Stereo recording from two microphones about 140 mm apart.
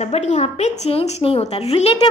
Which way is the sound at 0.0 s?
50° left (ahead or behind).